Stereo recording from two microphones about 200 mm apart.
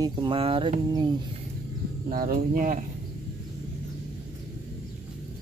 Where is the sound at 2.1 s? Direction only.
45° right (ahead or behind).